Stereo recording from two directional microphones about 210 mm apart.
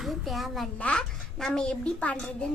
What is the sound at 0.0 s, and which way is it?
A child's voice, centre (ahead or behind).